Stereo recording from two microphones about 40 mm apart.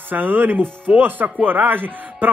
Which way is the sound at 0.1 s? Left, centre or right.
Right.